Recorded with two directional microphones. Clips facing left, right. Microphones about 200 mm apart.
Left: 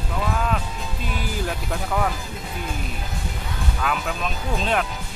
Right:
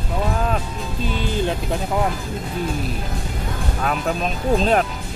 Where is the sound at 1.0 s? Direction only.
25° right (ahead or behind).